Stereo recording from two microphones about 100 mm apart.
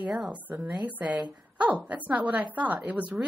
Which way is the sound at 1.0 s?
45° right (ahead or behind).